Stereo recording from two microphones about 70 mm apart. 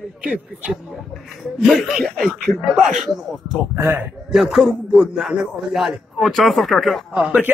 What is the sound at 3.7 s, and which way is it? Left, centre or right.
Speech, right.